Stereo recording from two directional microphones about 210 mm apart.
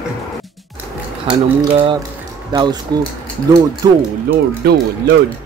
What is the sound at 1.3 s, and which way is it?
Speech, 25° right (ahead or behind).